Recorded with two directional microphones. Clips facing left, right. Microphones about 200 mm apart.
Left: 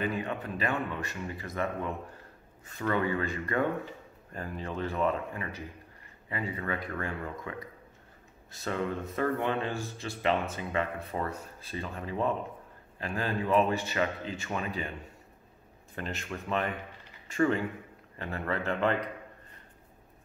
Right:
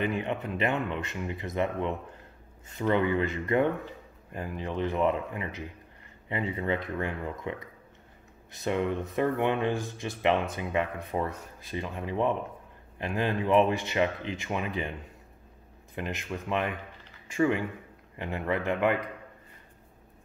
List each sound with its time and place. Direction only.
0.0 s speech: 20° right (ahead or behind)
16.0 s speech: 15° right (ahead or behind)